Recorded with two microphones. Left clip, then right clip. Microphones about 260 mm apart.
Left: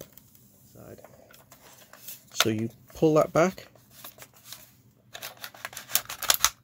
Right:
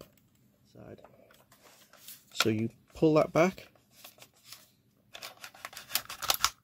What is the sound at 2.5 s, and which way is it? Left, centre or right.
Speech, centre.